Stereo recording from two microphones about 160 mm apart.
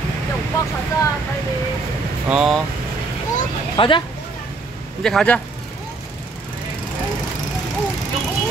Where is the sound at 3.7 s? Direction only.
30° left (ahead or behind).